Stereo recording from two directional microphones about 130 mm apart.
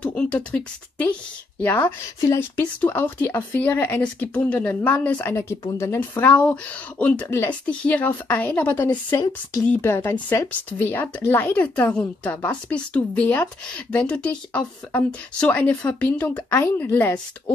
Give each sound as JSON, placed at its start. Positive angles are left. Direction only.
{"t": 0.0, "sound": "a woman's voice", "side_deg": 10}
{"t": 9.1, "sound": "speech", "side_deg": 35}
{"t": 9.7, "sound": "a woman's voice", "side_deg": 10}